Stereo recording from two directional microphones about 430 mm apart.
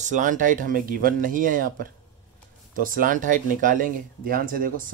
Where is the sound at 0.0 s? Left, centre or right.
Centre.